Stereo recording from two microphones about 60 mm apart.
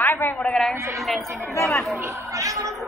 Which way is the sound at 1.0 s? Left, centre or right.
Centre.